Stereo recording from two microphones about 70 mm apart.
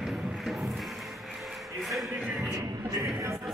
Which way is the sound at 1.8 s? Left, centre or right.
Centre.